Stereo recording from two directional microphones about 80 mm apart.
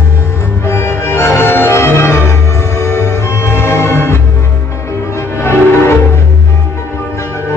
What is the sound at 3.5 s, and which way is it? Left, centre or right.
Music, left.